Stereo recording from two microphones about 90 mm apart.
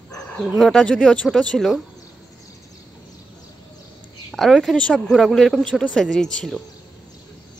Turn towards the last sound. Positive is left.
turn(degrees=5)  # may be behind; listen again after turning